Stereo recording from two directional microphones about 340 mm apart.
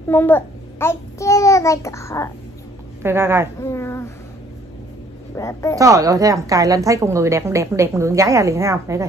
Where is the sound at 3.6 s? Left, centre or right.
Centre.